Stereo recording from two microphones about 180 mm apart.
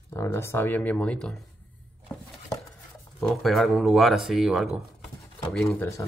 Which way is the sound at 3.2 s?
Centre (ahead or behind).